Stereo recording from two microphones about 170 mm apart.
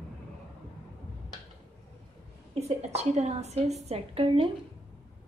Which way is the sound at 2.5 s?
40° right (ahead or behind).